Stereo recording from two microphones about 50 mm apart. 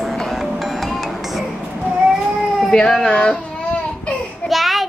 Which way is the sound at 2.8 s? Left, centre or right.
Centre.